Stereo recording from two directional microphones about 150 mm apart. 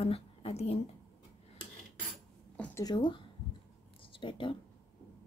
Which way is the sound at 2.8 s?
30° left (ahead or behind).